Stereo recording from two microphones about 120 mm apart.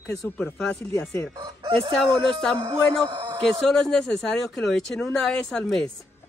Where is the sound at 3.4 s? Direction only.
Centre (ahead or behind).